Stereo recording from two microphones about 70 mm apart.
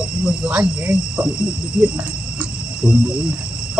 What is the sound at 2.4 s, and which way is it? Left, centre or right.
Cricket, centre.